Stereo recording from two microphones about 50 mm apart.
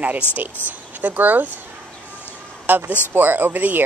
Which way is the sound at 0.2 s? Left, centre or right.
Left.